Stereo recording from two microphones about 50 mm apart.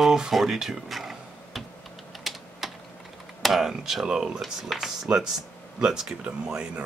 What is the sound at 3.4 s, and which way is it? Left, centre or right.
Speech, centre.